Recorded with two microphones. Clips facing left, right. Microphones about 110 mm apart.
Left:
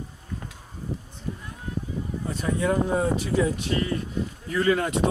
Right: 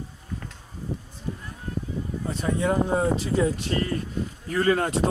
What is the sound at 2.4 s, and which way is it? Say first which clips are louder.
Speech: even; 25° right (ahead or behind).